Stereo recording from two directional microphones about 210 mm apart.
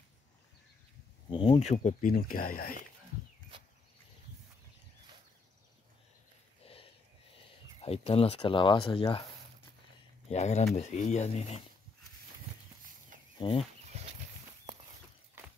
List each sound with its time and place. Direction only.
1.3 s speech: 25° left (ahead or behind); by 2.8 s 45° left (ahead or behind)
6.6 s a sound: 30° left (ahead or behind)
7.8 s speech: 30° left (ahead or behind)
10.2 s speech: 30° left (ahead or behind)
13.4 s speech: 25° left (ahead or behind)
13.8 s a sound: 30° right (ahead or behind)